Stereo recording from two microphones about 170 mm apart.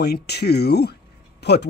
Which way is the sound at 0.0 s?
70° left (ahead or behind).